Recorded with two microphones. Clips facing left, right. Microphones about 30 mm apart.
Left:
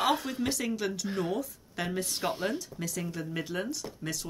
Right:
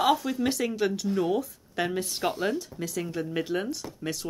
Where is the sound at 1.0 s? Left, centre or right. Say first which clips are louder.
Right 5 dB; centre.